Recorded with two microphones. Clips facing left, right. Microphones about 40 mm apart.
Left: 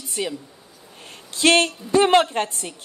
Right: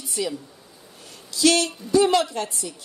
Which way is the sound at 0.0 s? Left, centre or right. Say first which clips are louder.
Even; left.